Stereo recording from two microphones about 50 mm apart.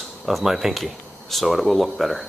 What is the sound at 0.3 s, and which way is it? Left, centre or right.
Speech, centre.